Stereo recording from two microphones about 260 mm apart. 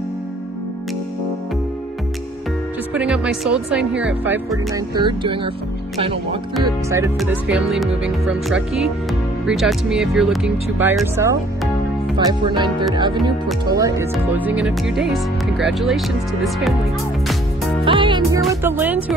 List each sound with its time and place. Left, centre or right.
2.9 s speech: centre
6.6 s speech: centre
17.8 s music: centre
18.4 s speech: centre